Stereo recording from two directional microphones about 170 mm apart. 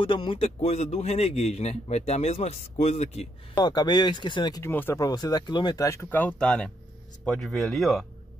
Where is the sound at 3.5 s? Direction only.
25° left (ahead or behind).